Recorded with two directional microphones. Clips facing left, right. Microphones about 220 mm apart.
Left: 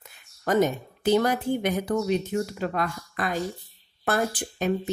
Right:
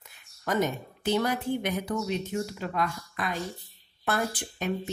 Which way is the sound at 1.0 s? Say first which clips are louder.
Left 5 dB; 45° left (ahead or behind).